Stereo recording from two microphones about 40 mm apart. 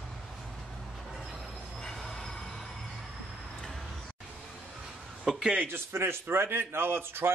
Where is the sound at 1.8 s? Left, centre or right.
Centre.